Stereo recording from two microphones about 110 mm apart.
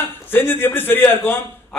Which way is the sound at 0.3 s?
20° left (ahead or behind).